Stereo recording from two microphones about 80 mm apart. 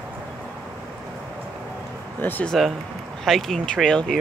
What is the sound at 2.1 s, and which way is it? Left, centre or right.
Speech, left.